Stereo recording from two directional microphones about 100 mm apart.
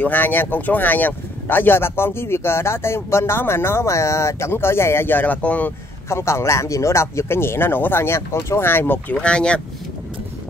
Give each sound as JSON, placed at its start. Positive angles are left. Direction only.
{"t": 0.0, "sound": "speech", "side_deg": 20}
{"t": 6.0, "sound": "speech", "side_deg": 25}